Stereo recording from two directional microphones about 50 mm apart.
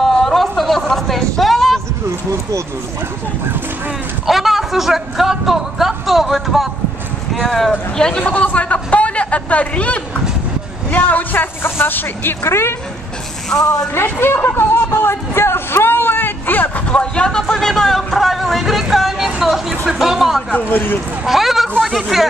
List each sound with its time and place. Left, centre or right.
0.0 s a sound: centre
4.3 s speech: centre
8.2 s a man's voice: left
12.4 s speech: left
13.5 s speech: left
14.2 s speech: left
14.5 s a sound: left
16.8 s a man's voice: left; by 20.4 s centre
20.7 s speech: left
21.3 s a man's voice: centre